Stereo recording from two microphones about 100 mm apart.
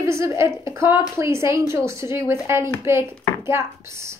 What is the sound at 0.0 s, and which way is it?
A woman's voice, 30° right (ahead or behind).